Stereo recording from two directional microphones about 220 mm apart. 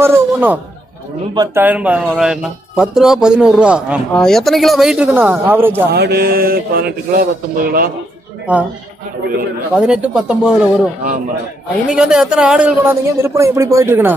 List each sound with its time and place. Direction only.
0.0 s a man's voice: 10° right (ahead or behind)
5.9 s speech: 50° right (ahead or behind)
9.8 s speech: 5° right (ahead or behind)
11.9 s a man's voice: 5° right (ahead or behind)